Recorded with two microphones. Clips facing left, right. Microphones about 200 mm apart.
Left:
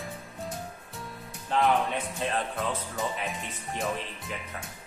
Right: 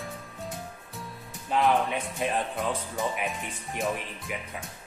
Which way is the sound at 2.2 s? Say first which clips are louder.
Right 2 dB; 15° right (ahead or behind).